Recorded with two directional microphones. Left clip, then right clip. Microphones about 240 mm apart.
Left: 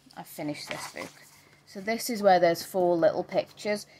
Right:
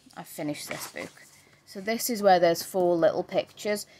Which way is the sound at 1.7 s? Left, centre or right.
Centre.